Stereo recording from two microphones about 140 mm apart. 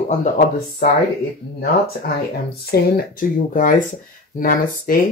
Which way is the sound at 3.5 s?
70° left (ahead or behind).